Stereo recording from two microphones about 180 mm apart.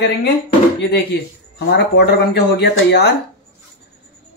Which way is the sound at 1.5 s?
65° left (ahead or behind).